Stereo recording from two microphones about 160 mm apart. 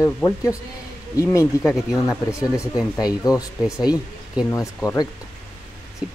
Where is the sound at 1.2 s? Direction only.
20° left (ahead or behind).